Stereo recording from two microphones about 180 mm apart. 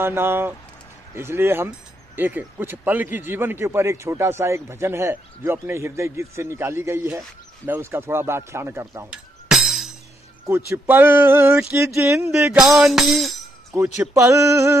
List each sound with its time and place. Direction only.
0.0 s a man's voice: 15° right (ahead or behind)
10.9 s a man's voice: 10° right (ahead or behind)
13.9 s a man's voice: 15° right (ahead or behind)